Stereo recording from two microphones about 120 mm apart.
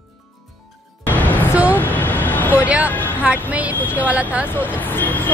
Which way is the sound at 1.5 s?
10° right (ahead or behind).